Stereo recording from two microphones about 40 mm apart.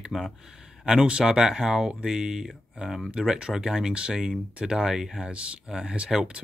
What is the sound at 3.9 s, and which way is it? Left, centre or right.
Speech, right.